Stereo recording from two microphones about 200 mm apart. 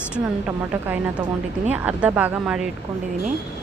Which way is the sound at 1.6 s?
10° right (ahead or behind).